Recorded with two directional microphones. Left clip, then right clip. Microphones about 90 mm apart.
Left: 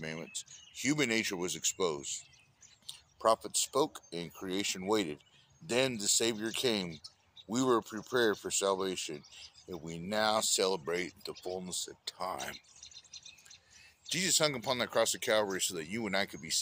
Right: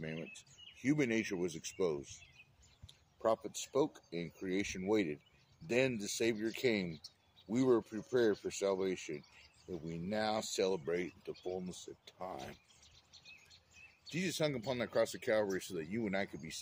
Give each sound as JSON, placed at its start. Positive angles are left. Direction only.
{"t": 0.0, "sound": "speech", "side_deg": -30}
{"t": 2.9, "sound": "a sound", "side_deg": -25}
{"t": 3.6, "sound": "speech", "side_deg": -30}
{"t": 14.0, "sound": "speech", "side_deg": -35}